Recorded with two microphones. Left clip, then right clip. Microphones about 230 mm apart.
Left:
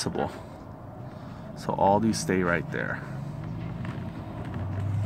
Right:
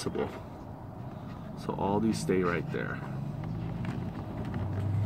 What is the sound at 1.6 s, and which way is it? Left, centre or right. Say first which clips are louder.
Speech: left 8 dB; left.